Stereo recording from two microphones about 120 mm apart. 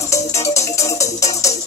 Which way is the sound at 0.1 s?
25° left (ahead or behind).